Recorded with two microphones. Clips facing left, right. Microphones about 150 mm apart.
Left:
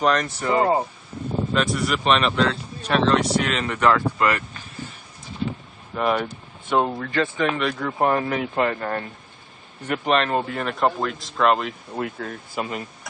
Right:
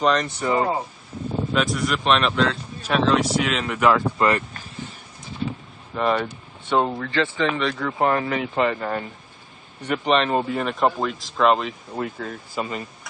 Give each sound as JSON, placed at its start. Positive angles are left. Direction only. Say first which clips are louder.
{"t": 0.0, "sound": "speech", "louder": "even", "side_deg": 5}
{"t": 3.9, "sound": "speech", "louder": "right 1 dB", "side_deg": -25}
{"t": 5.9, "sound": "speech", "louder": "even", "side_deg": 5}